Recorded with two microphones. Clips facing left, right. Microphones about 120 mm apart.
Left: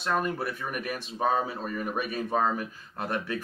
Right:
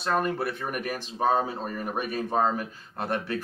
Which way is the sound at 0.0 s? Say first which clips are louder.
Right 2 dB; 30° right (ahead or behind).